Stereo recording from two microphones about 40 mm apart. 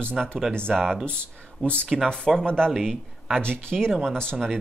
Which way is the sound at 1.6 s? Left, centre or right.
Left.